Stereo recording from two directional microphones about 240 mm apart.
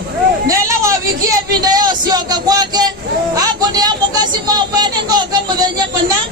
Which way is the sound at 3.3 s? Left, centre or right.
Centre.